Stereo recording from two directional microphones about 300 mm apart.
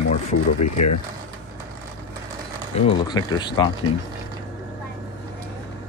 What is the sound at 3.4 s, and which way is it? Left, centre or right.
Speech, centre.